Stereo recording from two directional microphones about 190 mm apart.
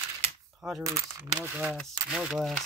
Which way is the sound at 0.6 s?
Centre (ahead or behind).